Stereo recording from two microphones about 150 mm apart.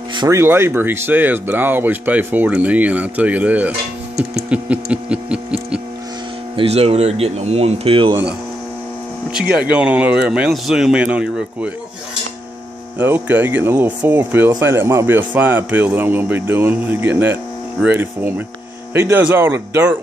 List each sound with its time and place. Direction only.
0.3 s speech: 15° right (ahead or behind)
6.5 s speech: 40° right (ahead or behind)
9.3 s speech: 5° right (ahead or behind)
13.0 s speech: 15° right (ahead or behind)